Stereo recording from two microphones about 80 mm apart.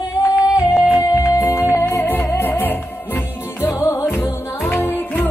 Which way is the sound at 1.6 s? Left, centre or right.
Left.